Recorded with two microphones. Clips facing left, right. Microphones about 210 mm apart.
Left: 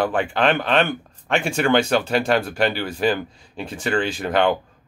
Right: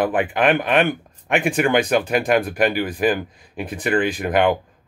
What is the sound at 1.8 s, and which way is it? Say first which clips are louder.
Speech: right 1 dB; 15° right (ahead or behind).